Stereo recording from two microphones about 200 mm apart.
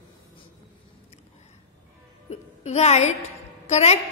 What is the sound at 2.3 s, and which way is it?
Music, 35° left (ahead or behind).